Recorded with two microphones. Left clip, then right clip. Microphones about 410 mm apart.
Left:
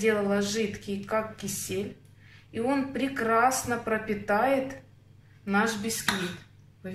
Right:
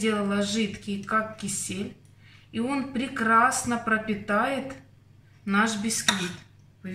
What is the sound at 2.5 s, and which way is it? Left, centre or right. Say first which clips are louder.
A woman's voice: left 1 dB; centre.